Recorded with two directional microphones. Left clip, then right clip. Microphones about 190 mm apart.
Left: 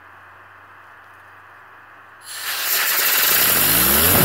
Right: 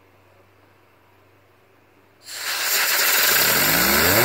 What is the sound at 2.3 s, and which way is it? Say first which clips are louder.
Vehicle: even; 15° left (ahead or behind).